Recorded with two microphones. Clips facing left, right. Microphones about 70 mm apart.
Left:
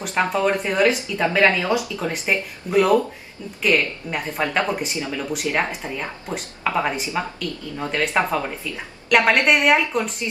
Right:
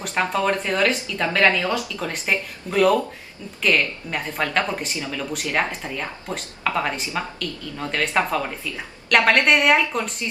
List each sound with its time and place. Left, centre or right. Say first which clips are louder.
0.0 s speech: left 2 dB; centre